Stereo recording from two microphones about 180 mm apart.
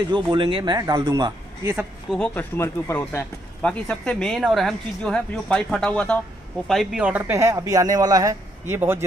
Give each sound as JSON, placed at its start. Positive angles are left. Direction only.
{"t": 0.1, "sound": "speech", "side_deg": -25}
{"t": 1.8, "sound": "speech", "side_deg": 0}